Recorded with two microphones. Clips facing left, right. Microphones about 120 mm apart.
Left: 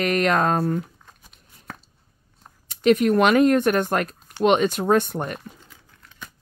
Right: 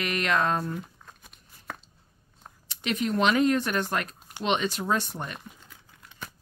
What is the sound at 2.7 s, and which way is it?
A woman's voice, 50° left (ahead or behind).